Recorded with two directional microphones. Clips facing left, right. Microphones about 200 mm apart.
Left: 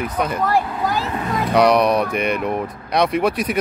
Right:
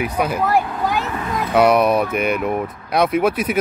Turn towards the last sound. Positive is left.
turn(degrees=-5)  # may be behind; listen again after turning